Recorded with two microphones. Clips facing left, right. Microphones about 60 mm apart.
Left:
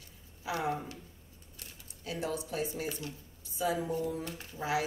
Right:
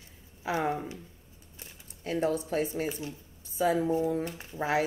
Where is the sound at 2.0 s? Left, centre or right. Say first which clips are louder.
Right 7 dB; right.